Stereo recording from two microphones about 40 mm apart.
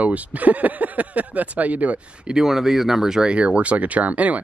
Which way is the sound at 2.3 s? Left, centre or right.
Centre.